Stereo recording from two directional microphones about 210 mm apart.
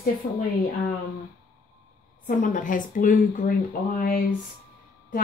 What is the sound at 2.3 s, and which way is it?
Speech, 40° left (ahead or behind).